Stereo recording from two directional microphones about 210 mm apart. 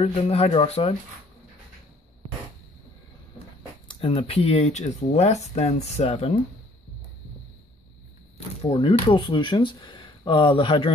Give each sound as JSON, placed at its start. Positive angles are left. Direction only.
{"t": 0.0, "sound": "speech", "side_deg": 30}
{"t": 3.8, "sound": "speech", "side_deg": 25}
{"t": 8.6, "sound": "speech", "side_deg": 25}